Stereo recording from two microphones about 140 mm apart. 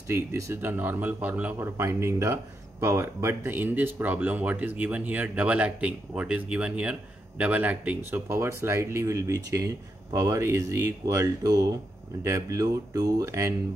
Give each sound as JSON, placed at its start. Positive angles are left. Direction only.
{"t": 0.1, "sound": "speech", "side_deg": -20}